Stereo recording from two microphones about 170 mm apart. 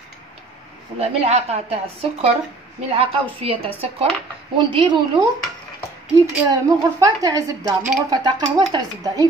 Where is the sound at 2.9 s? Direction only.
35° right (ahead or behind).